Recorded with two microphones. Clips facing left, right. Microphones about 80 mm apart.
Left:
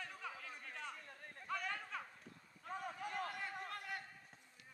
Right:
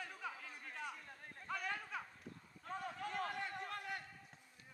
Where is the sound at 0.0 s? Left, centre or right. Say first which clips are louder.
Right 1 dB; centre.